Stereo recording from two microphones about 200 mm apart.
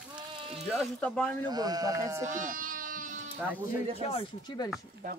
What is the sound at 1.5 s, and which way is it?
Speech, 20° right (ahead or behind).